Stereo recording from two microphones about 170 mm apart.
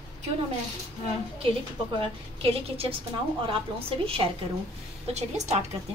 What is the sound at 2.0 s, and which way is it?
Speech, 35° right (ahead or behind).